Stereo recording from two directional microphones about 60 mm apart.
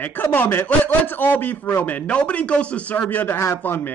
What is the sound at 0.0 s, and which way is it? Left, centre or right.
A man's voice, left.